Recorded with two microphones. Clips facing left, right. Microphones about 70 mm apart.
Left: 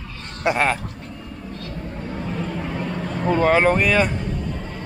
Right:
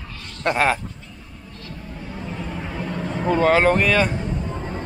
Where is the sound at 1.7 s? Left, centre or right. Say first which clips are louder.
Left 2 dB; left.